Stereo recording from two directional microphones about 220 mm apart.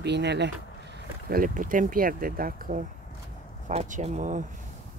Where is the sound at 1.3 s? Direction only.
40° right (ahead or behind).